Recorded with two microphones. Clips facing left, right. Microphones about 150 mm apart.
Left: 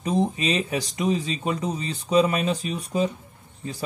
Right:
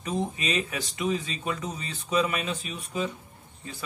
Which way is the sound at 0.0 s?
35° left (ahead or behind).